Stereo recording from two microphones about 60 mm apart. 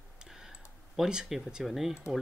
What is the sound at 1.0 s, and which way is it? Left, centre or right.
Speech, centre.